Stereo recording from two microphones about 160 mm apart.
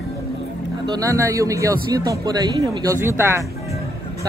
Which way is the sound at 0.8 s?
20° right (ahead or behind).